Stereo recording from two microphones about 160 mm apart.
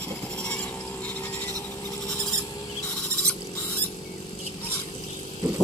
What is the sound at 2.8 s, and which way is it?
Rodents, 10° left (ahead or behind).